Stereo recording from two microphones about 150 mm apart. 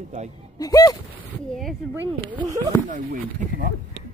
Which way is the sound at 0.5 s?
25° left (ahead or behind).